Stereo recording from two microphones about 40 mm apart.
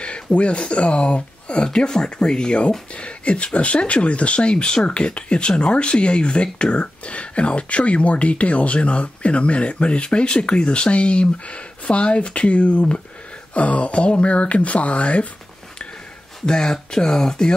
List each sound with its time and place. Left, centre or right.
0.0 s speech: left
16.4 s speech: centre